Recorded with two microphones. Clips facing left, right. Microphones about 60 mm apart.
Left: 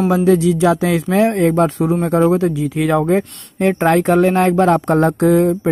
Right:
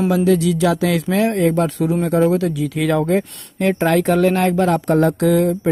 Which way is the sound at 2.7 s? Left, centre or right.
Centre.